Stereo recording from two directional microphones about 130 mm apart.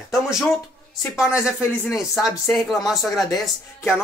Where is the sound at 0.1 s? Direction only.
5° right (ahead or behind).